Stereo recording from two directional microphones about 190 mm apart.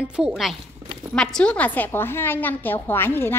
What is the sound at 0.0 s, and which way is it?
A woman's voice, 5° right (ahead or behind).